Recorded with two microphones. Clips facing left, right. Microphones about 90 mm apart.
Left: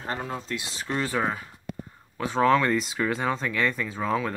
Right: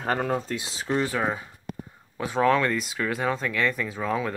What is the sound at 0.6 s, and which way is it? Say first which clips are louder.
Speech: right 3 dB; 25° right (ahead or behind).